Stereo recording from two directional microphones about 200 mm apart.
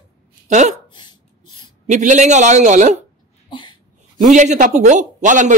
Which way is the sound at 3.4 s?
25° left (ahead or behind).